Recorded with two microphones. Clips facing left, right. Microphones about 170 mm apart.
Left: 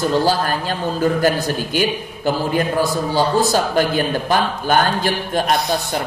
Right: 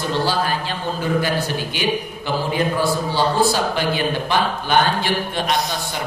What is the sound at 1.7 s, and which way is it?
A man's voice, 45° left (ahead or behind).